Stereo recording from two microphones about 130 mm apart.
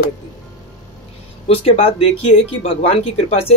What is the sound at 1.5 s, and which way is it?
Speech, 45° left (ahead or behind).